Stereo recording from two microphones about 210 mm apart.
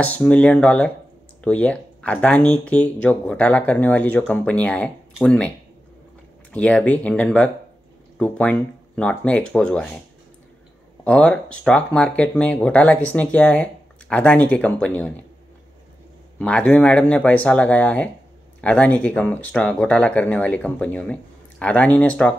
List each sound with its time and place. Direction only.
0.0 s speech: 5° left (ahead or behind)
6.5 s speech: 5° left (ahead or behind)
11.1 s speech: 5° left (ahead or behind)
16.3 s speech: 5° left (ahead or behind)